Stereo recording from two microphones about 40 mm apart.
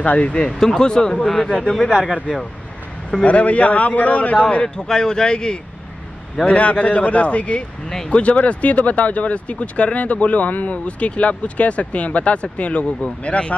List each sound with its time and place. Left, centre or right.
0.0 s speech: left
0.3 s speech: left
0.6 s speech: centre
1.2 s speech: centre
3.2 s speech: left
4.7 s speech: centre
6.4 s speech: left